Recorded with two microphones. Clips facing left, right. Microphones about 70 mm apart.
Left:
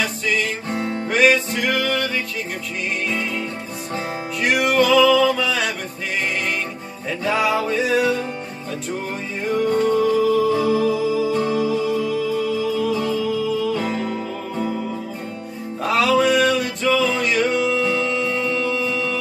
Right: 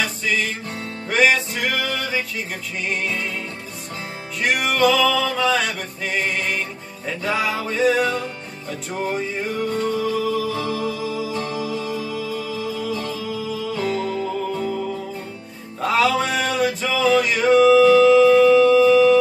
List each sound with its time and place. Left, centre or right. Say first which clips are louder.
1.1 s music: left 1 dB; centre
4.4 s music: left 1 dB; centre
10.5 s music: left 6 dB; centre
15.8 s music: left 2 dB; centre